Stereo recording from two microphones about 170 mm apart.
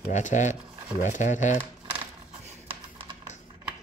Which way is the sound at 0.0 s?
45° left (ahead or behind).